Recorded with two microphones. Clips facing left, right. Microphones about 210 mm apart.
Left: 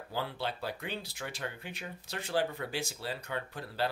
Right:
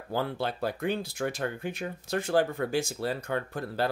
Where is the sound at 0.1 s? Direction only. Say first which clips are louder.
Right 6 dB; 50° right (ahead or behind).